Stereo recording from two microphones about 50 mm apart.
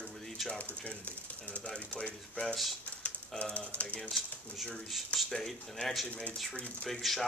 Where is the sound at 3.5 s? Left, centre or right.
Left.